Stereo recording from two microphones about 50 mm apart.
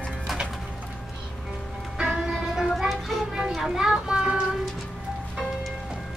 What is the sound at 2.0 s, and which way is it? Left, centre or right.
Music, centre.